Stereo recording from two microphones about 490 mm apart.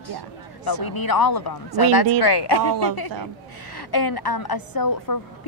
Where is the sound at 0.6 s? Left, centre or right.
Left.